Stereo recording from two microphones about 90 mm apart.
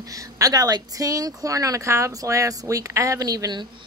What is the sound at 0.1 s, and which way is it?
A woman's voice, 40° right (ahead or behind).